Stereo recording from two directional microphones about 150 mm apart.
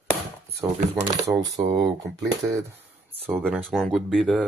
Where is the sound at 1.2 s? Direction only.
20° right (ahead or behind).